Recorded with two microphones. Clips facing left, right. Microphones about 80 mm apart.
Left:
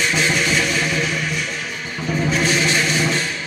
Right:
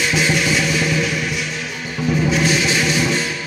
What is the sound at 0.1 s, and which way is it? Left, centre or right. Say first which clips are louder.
Music: right 1 dB; centre.